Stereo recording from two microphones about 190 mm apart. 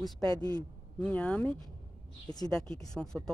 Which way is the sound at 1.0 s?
5° left (ahead or behind).